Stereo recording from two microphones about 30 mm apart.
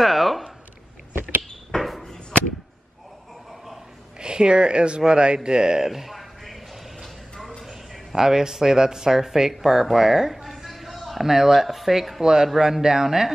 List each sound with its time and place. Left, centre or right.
0.0 s a sound: centre
1.8 s basketball bounce: centre
4.2 s speech: right
5.9 s speech: centre
6.1 s a sound: centre
8.1 s speech: centre
10.4 s music: centre
11.2 s speech: centre
12.2 s speech: right